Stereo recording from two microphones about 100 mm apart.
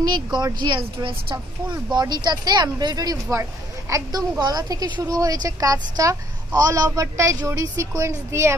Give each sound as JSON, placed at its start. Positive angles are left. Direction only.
{"t": 0.3, "sound": "a woman's voice", "side_deg": -45}